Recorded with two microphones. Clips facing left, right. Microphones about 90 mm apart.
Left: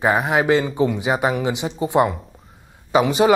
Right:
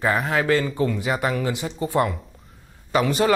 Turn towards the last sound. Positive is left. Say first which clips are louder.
# left 4 dB
turn(degrees=5)  # may be behind; listen again after turning